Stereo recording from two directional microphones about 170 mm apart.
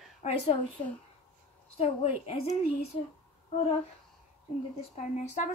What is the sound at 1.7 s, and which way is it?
A woman's voice, 35° left (ahead or behind).